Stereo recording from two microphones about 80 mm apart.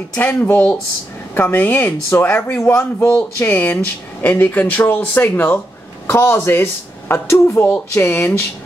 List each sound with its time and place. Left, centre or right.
0.1 s speech: left